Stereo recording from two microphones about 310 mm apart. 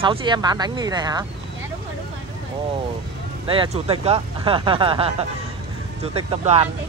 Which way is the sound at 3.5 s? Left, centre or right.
Centre.